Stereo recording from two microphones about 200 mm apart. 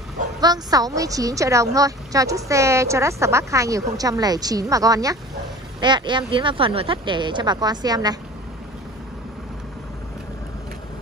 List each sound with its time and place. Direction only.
0.4 s a woman's voice: 20° right (ahead or behind)